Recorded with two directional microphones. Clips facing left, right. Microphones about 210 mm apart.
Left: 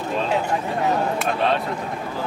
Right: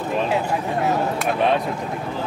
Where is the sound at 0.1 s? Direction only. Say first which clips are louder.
Right 1 dB; 10° right (ahead or behind).